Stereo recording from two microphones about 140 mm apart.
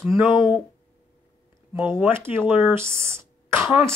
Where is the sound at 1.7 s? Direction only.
10° right (ahead or behind).